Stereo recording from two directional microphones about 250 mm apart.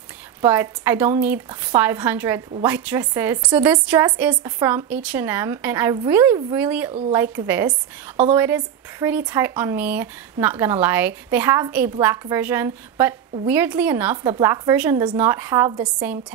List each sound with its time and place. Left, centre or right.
0.4 s a woman's voice: centre
6.9 s a woman's voice: right
7.2 s a woman's voice: centre